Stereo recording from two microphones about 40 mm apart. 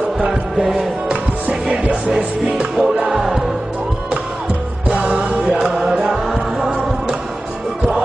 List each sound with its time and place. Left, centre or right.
0.2 s chant: centre
1.7 s music: right
4.8 s music: right
5.1 s music: right
5.5 s music: centre